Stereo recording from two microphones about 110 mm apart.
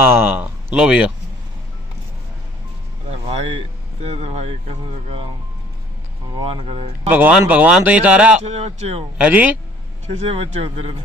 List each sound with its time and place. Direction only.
0.1 s speech: 15° right (ahead or behind)
3.1 s speech: 65° right (ahead or behind)
6.3 s speech: 55° right (ahead or behind)
7.1 s speech: 15° right (ahead or behind)
8.4 s speech: 85° right
9.2 s speech: 15° right (ahead or behind)
10.1 s speech: 70° right (ahead or behind)